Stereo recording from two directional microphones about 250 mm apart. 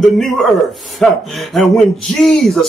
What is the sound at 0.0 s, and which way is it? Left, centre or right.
Speech, centre.